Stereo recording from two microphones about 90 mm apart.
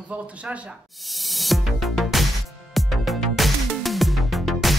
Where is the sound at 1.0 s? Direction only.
Centre (ahead or behind).